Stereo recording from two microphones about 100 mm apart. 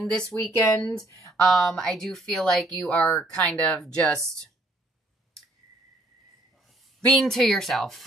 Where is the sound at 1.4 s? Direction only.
5° left (ahead or behind).